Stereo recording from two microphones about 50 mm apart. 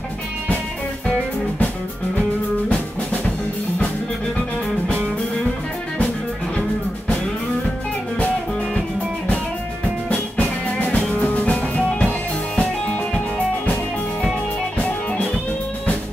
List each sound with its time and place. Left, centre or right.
10.0 s music: left
11.9 s music: centre
14.8 s music: left